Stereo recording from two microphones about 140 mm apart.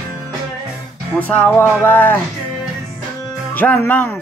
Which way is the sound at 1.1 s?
10° left (ahead or behind).